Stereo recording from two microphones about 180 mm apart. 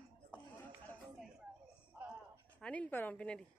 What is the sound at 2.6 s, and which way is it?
Speech, 5° left (ahead or behind).